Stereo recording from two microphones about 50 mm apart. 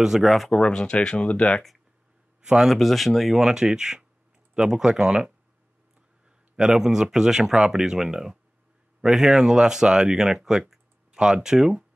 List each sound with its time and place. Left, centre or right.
0.0 s speech: centre
0.5 s speech: centre
2.4 s a man's voice: centre
2.7 s speech: centre